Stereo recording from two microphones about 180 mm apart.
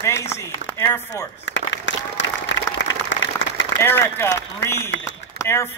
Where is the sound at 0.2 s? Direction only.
15° left (ahead or behind).